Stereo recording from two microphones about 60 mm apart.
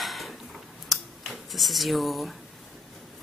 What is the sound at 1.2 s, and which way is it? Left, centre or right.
Speech, centre.